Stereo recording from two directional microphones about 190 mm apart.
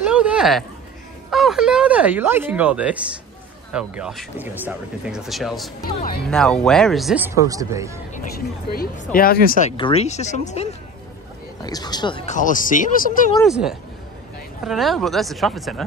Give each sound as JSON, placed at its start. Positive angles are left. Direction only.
{"t": 0.0, "sound": "a sound", "side_deg": -5}
{"t": 1.3, "sound": "speech", "side_deg": 0}
{"t": 5.8, "sound": "speech", "side_deg": 50}
{"t": 6.2, "sound": "speech", "side_deg": 5}
{"t": 7.2, "sound": "speech", "side_deg": -15}
{"t": 8.1, "sound": "speech", "side_deg": 45}
{"t": 9.7, "sound": "speech", "side_deg": 30}
{"t": 11.6, "sound": "speech", "side_deg": 20}
{"t": 12.3, "sound": "speech", "side_deg": 45}
{"t": 13.4, "sound": "speech", "side_deg": 0}